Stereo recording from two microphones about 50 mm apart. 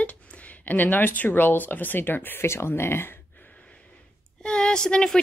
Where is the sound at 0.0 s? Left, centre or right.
Left.